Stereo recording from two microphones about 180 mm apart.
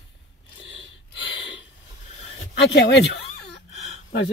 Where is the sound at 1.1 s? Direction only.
90° left.